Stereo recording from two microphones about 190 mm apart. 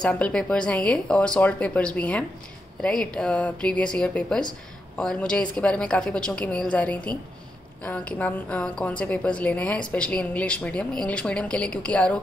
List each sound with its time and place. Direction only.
0.0 s a woman's voice: 5° left (ahead or behind)